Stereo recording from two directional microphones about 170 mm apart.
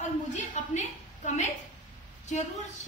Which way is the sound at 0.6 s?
45° left (ahead or behind).